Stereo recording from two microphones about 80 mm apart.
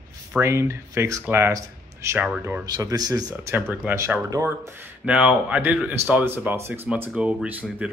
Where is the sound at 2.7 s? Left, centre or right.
Right.